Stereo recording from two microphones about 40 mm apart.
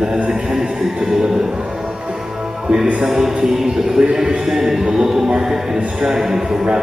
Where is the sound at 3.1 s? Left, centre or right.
Centre.